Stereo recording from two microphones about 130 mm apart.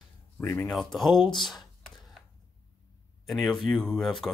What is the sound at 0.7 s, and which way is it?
Speech, centre (ahead or behind).